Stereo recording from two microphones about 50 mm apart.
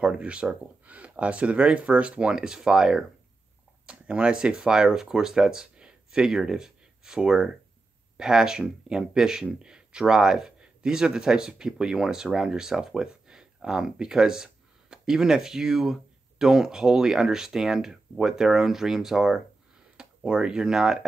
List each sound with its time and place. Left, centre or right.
0.0 s speech: right